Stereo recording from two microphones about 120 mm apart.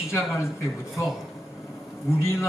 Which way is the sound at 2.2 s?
25° left (ahead or behind).